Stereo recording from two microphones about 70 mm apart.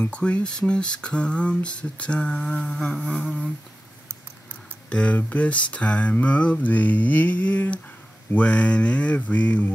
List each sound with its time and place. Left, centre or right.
0.0 s speech: centre
4.8 s speech: centre